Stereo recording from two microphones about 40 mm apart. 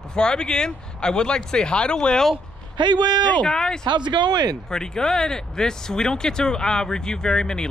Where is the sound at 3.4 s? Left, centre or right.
Centre.